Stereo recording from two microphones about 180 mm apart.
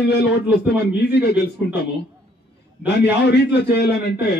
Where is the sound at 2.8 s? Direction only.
65° left (ahead or behind).